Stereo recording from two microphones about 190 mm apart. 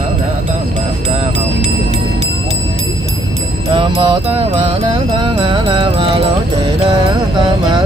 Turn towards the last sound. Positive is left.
turn(degrees=-25)  # may be behind; listen again after turning